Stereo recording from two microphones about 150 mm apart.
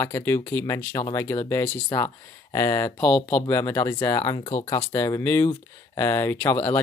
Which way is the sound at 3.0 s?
10° left (ahead or behind).